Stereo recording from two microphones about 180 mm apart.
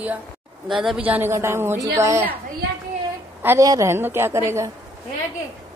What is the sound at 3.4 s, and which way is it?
A woman's voice, 15° right (ahead or behind).